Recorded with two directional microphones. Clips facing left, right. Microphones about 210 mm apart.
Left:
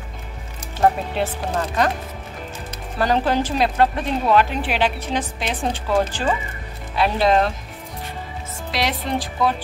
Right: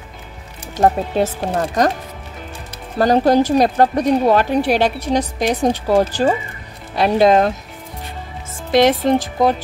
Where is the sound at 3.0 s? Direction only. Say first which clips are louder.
Right 7 dB; 40° right (ahead or behind).